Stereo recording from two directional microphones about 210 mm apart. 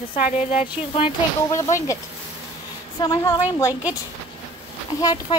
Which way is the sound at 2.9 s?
20° left (ahead or behind).